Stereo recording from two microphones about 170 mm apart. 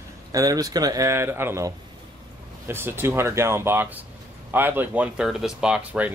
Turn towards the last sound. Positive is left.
turn(degrees=-10)  # may be behind; listen again after turning